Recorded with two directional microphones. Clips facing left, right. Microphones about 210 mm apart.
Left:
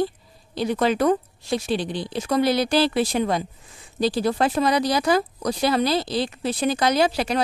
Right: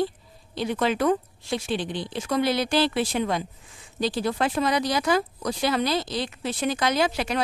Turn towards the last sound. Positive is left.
turn(degrees=35)  # may be behind; listen again after turning